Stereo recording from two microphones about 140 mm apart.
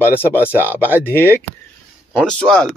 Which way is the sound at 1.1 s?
15° left (ahead or behind).